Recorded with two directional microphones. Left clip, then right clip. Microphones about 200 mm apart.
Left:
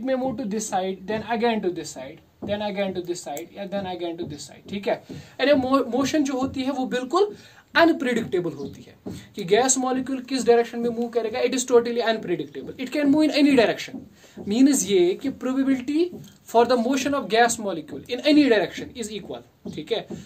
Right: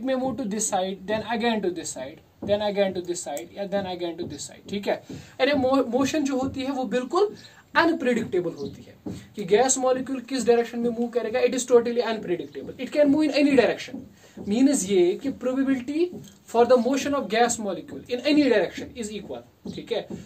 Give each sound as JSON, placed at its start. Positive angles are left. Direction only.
{"t": 0.0, "sound": "a woman's voice", "side_deg": 10}
{"t": 5.4, "sound": "a man's voice", "side_deg": 35}
{"t": 9.5, "sound": "a man's voice", "side_deg": 40}